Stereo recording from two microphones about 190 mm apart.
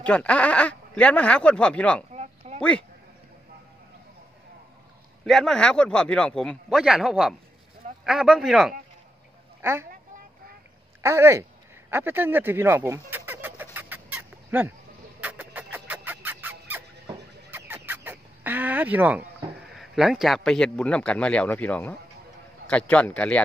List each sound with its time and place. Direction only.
0.0 s speech: 5° left (ahead or behind)
2.1 s a sound: 35° right (ahead or behind)
5.2 s speech: centre (ahead or behind)
9.6 s a woman's voice: 10° right (ahead or behind)
11.0 s speech: 15° right (ahead or behind)
13.7 s fowl: 10° right (ahead or behind)
17.5 s speech: 10° right (ahead or behind); by 23.4 s 5° left (ahead or behind)